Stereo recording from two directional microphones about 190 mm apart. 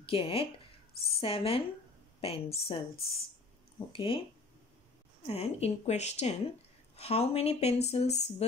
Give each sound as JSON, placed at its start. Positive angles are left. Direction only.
{"t": 0.0, "sound": "speech", "side_deg": 30}
{"t": 5.2, "sound": "speech", "side_deg": 35}